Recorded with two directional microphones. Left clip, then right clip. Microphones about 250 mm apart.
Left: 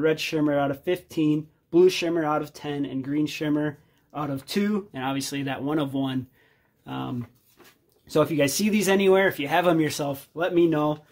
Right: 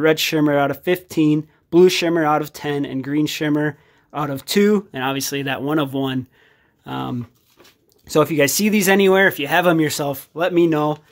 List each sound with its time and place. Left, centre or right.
0.0 s speech: right